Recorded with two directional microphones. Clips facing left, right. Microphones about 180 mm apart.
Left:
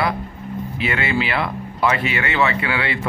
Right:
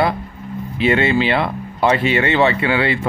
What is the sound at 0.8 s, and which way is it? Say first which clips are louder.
Speech: right 7 dB; 25° right (ahead or behind).